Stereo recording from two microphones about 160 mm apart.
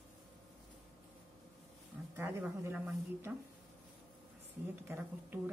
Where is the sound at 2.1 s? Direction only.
15° right (ahead or behind).